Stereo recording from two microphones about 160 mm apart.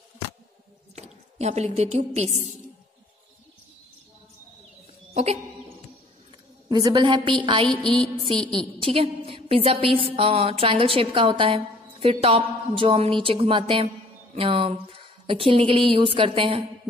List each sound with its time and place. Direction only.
0.9 s a woman's voice: 45° right (ahead or behind)
5.1 s music: 40° right (ahead or behind)
6.7 s a woman's voice: 25° right (ahead or behind)
7.8 s music: 5° left (ahead or behind)
8.8 s a woman's voice: 35° right (ahead or behind)